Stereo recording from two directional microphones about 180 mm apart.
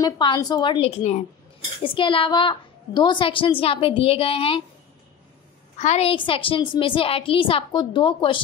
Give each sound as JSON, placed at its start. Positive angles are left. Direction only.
{"t": 0.0, "sound": "a woman's voice", "side_deg": 25}
{"t": 5.8, "sound": "a woman's voice", "side_deg": 35}